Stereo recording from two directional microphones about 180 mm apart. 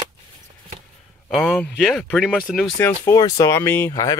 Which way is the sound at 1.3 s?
5° left (ahead or behind).